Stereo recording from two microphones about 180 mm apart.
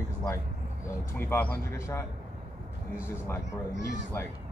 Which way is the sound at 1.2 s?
10° left (ahead or behind).